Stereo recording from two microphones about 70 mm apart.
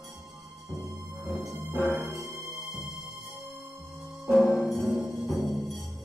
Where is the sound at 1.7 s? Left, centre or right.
Right.